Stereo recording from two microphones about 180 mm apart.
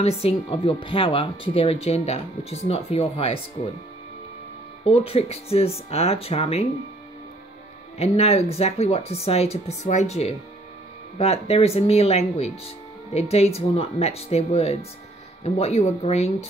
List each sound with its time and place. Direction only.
0.0 s speech: 30° left (ahead or behind)
4.8 s speech: 35° left (ahead or behind)
8.0 s speech: 35° left (ahead or behind)